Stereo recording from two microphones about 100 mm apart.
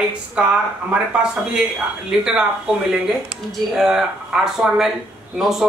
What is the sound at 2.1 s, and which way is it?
Speech, 5° right (ahead or behind).